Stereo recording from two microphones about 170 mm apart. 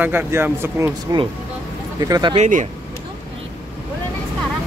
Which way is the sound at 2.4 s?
45° right (ahead or behind).